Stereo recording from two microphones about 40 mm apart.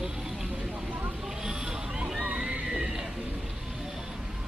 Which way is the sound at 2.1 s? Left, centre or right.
Right.